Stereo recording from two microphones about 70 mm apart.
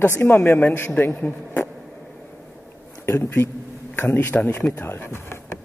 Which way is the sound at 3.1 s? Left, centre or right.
Left.